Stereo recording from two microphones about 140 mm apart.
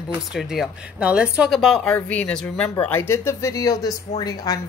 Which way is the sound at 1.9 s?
10° left (ahead or behind).